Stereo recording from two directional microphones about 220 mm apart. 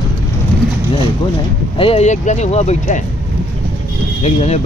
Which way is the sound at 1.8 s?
25° left (ahead or behind).